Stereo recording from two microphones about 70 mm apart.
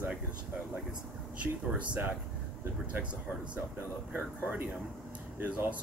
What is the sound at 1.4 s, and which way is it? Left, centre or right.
Speech, centre.